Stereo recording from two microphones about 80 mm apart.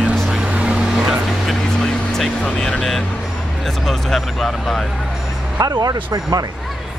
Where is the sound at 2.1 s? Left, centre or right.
Centre.